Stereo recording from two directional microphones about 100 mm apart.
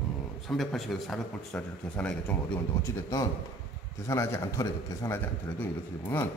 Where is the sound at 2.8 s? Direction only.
35° left (ahead or behind).